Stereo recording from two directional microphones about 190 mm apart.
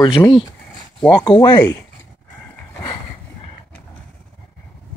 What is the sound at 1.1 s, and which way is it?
Speech, 25° left (ahead or behind).